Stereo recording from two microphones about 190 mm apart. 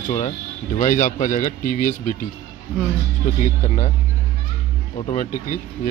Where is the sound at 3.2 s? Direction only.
40° left (ahead or behind).